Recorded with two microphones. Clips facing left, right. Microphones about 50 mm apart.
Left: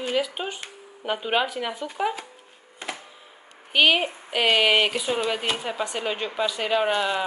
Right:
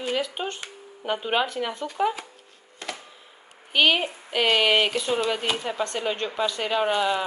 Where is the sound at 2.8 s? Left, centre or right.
Centre.